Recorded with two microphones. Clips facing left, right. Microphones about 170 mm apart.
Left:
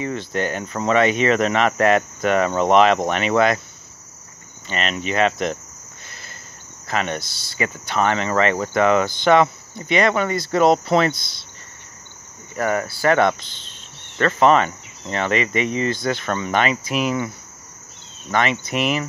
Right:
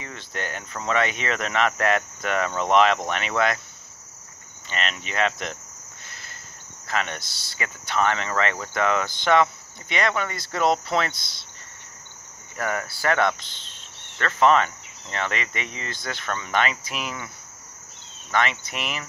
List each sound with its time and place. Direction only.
0.0 s speech: 25° left (ahead or behind)
4.6 s speech: 15° left (ahead or behind)
6.9 s speech: 20° left (ahead or behind)
12.5 s speech: 10° left (ahead or behind)
18.3 s speech: 15° left (ahead or behind)